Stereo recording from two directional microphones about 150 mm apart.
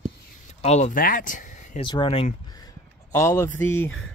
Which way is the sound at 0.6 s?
50° left (ahead or behind).